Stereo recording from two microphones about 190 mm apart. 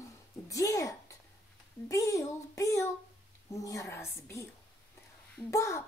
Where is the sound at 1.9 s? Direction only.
15° left (ahead or behind).